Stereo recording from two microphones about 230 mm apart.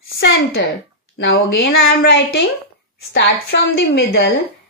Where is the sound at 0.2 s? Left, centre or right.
Left.